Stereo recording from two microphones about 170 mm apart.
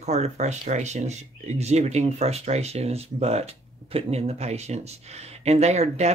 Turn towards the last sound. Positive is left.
turn(degrees=-40)  # may be behind; listen again after turning